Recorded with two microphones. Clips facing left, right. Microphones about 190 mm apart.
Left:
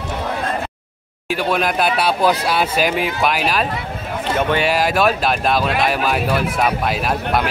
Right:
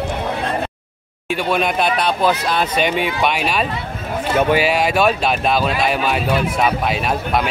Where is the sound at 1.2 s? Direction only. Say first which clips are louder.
Even; centre (ahead or behind).